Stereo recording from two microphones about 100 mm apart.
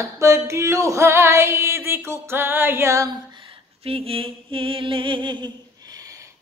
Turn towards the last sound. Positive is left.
turn(degrees=-55)  # may be behind; listen again after turning